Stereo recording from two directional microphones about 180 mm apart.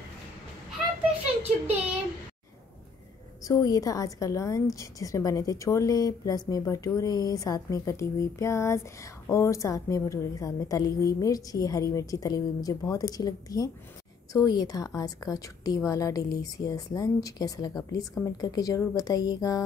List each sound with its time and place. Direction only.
3.4 s a woman's voice: 20° left (ahead or behind)